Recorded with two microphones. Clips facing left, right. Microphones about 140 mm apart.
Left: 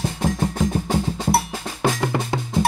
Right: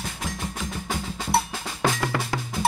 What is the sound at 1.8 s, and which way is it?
Drum, 20° left (ahead or behind).